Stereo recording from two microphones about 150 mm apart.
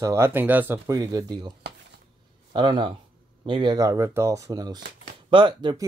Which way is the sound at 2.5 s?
30° right (ahead or behind).